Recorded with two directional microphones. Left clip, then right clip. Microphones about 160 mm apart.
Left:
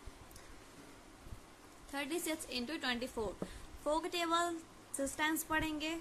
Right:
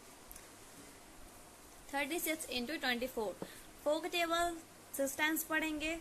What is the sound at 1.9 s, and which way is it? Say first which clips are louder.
A woman's voice: right 2 dB; 10° right (ahead or behind).